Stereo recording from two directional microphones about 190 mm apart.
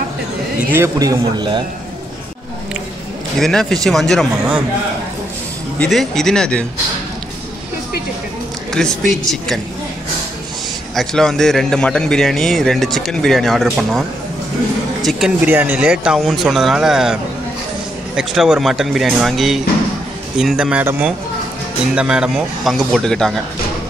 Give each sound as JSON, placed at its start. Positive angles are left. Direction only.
{"t": 0.7, "sound": "a man's voice", "side_deg": -15}
{"t": 3.3, "sound": "a man's voice", "side_deg": 0}
{"t": 5.8, "sound": "a man's voice", "side_deg": 0}
{"t": 8.8, "sound": "a man's voice", "side_deg": 0}
{"t": 11.0, "sound": "a man's voice", "side_deg": 0}